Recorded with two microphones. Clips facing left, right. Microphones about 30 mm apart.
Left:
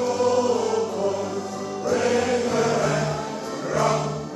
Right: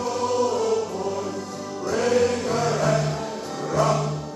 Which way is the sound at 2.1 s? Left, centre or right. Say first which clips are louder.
Right 1 dB; centre.